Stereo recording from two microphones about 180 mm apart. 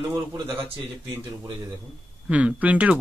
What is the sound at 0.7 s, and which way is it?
Speech, 30° right (ahead or behind).